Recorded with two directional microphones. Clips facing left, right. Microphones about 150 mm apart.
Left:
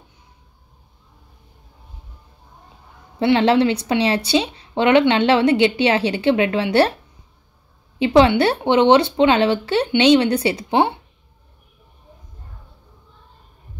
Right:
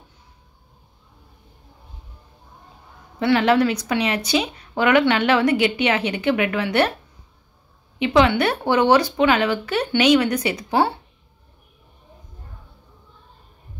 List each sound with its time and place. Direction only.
3.2 s speech: 25° left (ahead or behind)
8.0 s speech: 30° left (ahead or behind)